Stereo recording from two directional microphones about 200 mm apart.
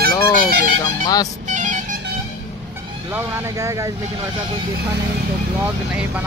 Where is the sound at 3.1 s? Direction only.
10° right (ahead or behind).